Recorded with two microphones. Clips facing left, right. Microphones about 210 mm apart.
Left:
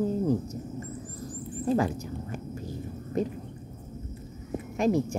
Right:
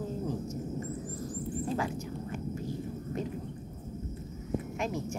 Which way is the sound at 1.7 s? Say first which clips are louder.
Left 6 dB; 40° left (ahead or behind).